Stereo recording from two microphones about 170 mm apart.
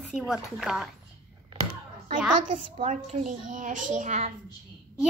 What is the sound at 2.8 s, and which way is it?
A child's voice, 45° right (ahead or behind).